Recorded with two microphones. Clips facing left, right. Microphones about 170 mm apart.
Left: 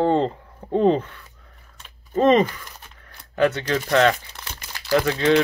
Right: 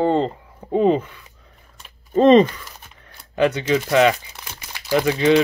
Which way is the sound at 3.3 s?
15° right (ahead or behind).